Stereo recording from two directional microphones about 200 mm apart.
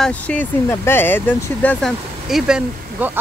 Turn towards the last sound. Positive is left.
turn(degrees=-5)  # may be behind; listen again after turning